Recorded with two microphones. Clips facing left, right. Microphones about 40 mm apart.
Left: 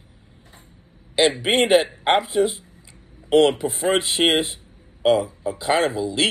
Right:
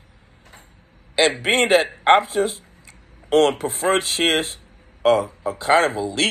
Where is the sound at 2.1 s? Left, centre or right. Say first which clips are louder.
Right 3 dB; right.